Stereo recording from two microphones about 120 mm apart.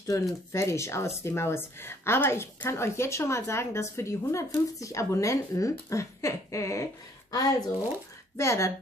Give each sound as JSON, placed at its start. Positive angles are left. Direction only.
{"t": 0.0, "sound": "a woman's voice", "side_deg": 25}